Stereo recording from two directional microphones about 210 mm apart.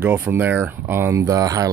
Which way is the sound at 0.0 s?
10° right (ahead or behind).